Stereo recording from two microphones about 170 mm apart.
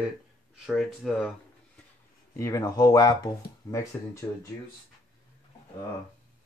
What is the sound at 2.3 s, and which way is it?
Speech, 20° left (ahead or behind).